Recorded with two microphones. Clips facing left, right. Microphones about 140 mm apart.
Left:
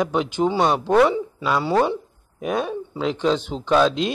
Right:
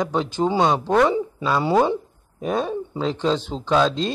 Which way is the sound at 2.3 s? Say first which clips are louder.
Right 1 dB; 5° left (ahead or behind).